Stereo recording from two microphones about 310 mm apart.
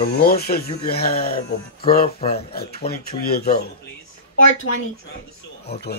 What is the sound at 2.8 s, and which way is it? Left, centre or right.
Speech, left.